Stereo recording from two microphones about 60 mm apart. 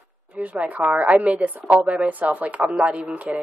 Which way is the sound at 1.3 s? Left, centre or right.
Right.